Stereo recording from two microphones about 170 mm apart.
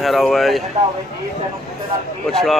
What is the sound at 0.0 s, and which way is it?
Speech, centre (ahead or behind).